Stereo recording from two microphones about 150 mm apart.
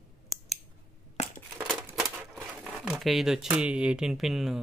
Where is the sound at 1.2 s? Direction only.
50° left (ahead or behind).